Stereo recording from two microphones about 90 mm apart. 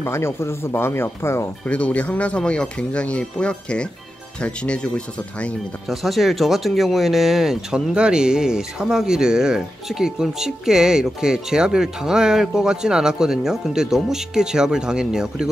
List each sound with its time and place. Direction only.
0.0 s speech: 30° left (ahead or behind)
1.7 s speech: 15° left (ahead or behind)
5.9 s speech: centre (ahead or behind)